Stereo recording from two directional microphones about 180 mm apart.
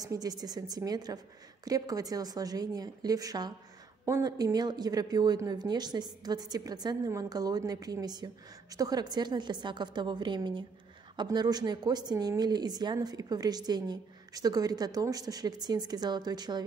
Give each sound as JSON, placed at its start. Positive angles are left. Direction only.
{"t": 0.0, "sound": "speech", "side_deg": -20}